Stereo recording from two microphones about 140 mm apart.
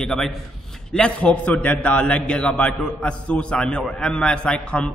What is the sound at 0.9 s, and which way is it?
A man's voice, 10° left (ahead or behind).